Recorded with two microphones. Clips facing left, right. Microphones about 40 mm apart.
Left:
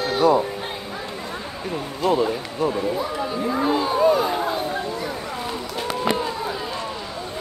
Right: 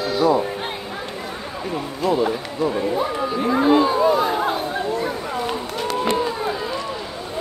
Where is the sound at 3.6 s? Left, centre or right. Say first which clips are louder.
Right 4 dB; right.